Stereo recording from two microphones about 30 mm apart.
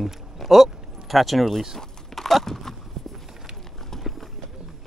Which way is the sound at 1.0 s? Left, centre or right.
Centre.